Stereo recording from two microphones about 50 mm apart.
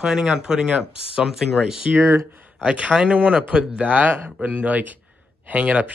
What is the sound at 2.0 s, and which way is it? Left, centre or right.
Speech, right.